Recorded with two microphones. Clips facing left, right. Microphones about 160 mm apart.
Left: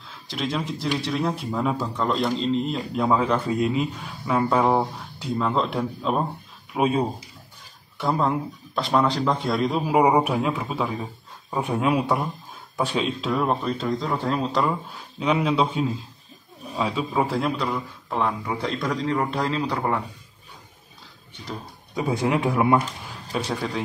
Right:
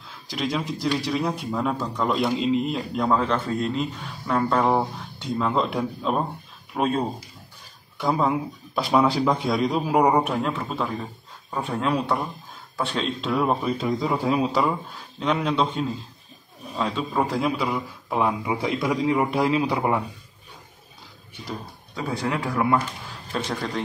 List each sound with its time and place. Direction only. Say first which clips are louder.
0.3 s a man's voice: right 1 dB; centre (ahead or behind)
21.9 s speech: left 4 dB; 20° left (ahead or behind)
23.3 s speech: left 1 dB; 5° left (ahead or behind)